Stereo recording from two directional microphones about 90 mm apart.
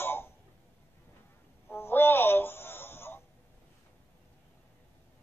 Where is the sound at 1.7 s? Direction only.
25° left (ahead or behind).